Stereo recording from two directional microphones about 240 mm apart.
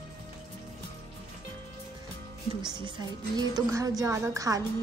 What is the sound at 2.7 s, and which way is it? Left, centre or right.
A woman's voice, centre.